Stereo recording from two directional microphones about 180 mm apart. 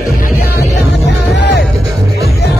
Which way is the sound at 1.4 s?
70° left (ahead or behind).